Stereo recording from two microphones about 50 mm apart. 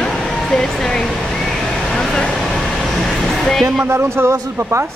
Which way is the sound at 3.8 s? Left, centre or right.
Right.